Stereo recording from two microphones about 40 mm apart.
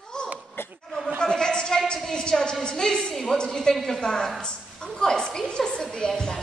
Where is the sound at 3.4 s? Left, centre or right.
Centre.